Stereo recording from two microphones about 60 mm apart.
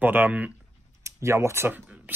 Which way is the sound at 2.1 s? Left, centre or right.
Right.